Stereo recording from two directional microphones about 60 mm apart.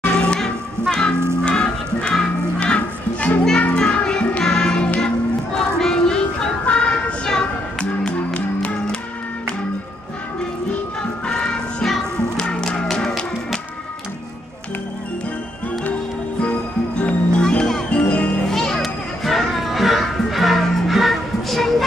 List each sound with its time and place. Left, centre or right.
0.2 s music: centre
2.6 s children playing: left
3.6 s music: centre
10.7 s music: centre
15.8 s music: left
18.5 s children playing: centre